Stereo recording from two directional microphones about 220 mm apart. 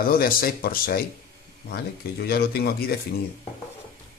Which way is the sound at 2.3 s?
45° left (ahead or behind).